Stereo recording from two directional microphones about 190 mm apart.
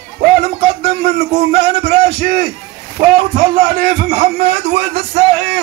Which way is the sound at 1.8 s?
45° right (ahead or behind).